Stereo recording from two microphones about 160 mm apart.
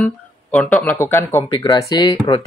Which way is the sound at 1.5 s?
25° left (ahead or behind).